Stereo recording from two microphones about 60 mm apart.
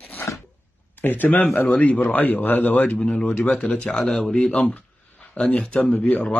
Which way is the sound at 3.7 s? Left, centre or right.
Centre.